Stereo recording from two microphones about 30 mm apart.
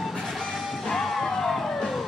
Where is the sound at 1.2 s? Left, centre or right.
Centre.